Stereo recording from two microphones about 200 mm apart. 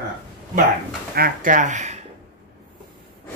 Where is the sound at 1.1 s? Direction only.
45° right (ahead or behind).